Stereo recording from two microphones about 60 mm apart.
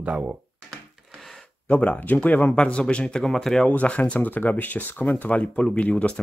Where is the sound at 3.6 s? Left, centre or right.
Left.